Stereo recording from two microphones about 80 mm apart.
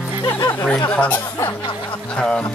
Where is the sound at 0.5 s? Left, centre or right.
Centre.